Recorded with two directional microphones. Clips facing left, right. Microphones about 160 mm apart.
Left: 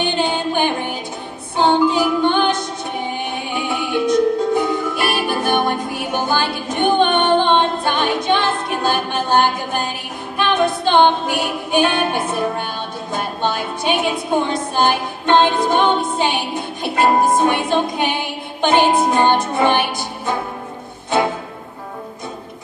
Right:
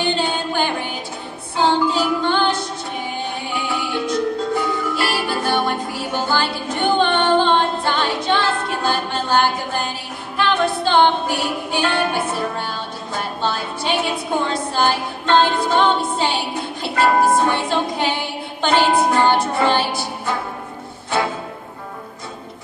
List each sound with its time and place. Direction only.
0.0 s music: 20° left (ahead or behind)
3.6 s music: 20° left (ahead or behind)